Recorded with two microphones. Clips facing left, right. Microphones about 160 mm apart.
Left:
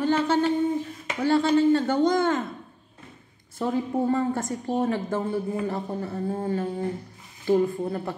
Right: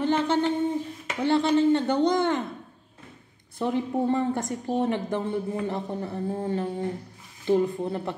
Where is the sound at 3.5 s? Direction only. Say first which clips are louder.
Even; 20° right (ahead or behind).